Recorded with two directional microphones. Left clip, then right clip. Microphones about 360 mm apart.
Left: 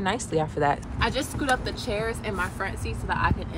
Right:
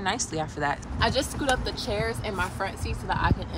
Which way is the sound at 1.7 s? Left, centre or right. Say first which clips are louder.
Even; right.